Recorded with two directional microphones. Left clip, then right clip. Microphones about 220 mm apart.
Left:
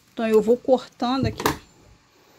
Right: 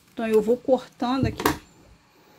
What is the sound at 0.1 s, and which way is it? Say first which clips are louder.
Speech: left 3 dB; 15° left (ahead or behind).